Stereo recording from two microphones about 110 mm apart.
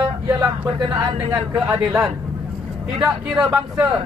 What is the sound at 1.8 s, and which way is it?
Speech, 5° right (ahead or behind).